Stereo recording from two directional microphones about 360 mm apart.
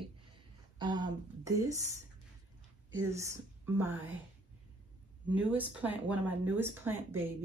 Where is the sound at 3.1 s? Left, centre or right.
Centre.